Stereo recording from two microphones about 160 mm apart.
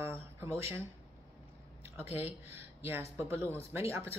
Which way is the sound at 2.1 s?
15° right (ahead or behind).